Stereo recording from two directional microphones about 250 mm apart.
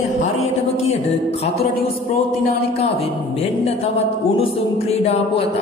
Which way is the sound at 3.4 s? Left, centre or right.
Left.